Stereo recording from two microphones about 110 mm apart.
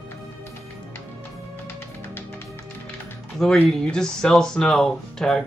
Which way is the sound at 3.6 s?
5° left (ahead or behind).